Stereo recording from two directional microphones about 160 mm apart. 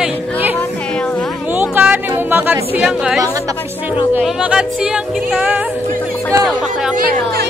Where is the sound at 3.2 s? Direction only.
20° right (ahead or behind).